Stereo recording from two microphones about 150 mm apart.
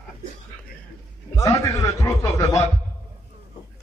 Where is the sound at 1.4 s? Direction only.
20° left (ahead or behind).